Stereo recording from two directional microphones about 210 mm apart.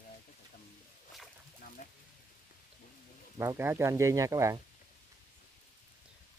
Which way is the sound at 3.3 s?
10° right (ahead or behind).